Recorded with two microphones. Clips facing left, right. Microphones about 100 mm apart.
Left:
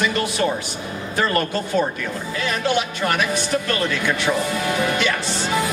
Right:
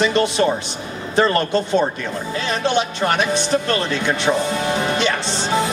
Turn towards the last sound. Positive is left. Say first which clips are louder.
# right 2 dB
turn(degrees=-25)  # may be behind; listen again after turning